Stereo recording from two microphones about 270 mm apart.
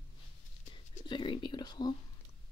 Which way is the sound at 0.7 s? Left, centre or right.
Centre.